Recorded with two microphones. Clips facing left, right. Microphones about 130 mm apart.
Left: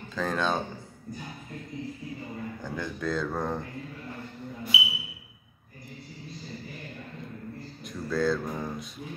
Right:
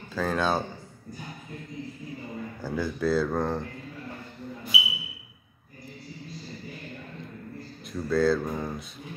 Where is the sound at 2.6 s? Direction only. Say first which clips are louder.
Right 6 dB; 5° right (ahead or behind).